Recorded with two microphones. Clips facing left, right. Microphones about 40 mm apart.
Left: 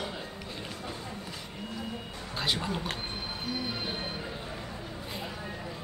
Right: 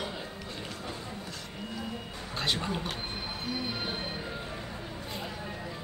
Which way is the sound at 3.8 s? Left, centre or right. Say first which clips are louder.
Even; centre.